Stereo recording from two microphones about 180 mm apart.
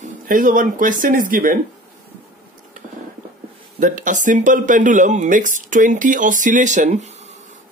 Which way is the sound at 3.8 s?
45° right (ahead or behind).